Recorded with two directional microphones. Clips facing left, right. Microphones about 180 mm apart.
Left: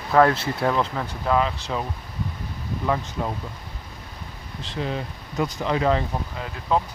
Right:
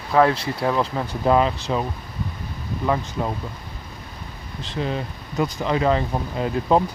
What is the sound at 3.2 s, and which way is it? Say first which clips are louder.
Speech: right 2 dB; 30° right (ahead or behind).